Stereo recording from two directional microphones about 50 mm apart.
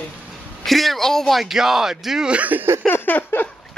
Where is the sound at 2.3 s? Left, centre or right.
Right.